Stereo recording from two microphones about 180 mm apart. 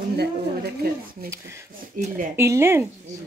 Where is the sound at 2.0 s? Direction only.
50° right (ahead or behind).